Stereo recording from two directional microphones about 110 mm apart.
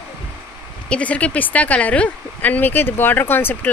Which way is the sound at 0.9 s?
10° left (ahead or behind).